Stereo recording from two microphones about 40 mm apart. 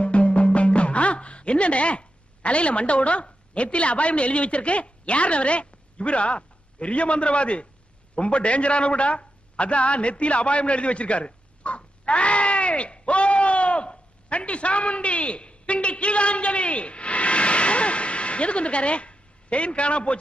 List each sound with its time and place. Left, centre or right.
0.0 s a man's voice: left